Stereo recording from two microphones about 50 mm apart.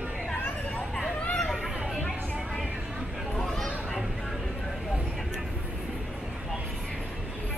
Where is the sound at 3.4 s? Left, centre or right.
Centre.